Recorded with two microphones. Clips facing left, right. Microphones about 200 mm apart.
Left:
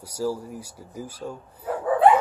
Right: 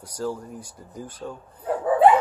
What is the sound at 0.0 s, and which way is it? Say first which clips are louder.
Speech: left 2 dB; 10° left (ahead or behind).